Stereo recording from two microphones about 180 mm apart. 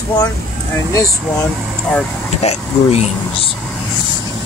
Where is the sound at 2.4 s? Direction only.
35° left (ahead or behind).